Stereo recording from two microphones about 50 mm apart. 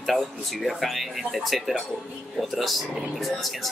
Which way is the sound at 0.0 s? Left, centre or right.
Centre.